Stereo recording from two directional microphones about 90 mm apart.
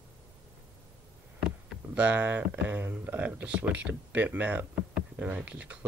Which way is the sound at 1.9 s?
15° right (ahead or behind).